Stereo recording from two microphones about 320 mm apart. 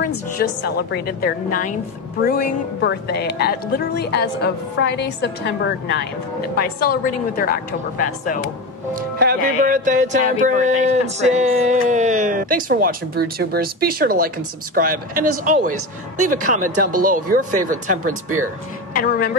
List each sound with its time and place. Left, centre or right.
0.4 s a woman's voice: left
9.2 s speech: right
18.9 s a woman's voice: left